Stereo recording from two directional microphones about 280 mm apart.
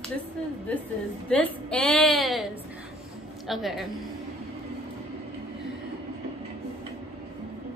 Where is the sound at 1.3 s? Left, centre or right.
Centre.